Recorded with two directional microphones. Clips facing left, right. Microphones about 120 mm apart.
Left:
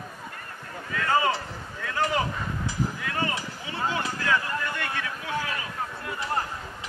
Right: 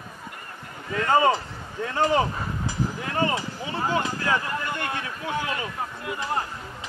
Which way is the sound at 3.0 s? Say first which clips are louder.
Right 4 dB; 30° right (ahead or behind).